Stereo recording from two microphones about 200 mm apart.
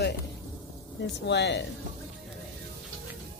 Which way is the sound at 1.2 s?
60° left (ahead or behind).